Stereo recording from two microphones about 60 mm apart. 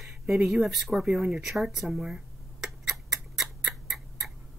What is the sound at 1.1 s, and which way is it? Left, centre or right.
Speech, centre.